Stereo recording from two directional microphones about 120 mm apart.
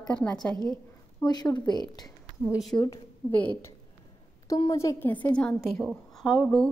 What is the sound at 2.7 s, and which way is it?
Speech, 35° left (ahead or behind).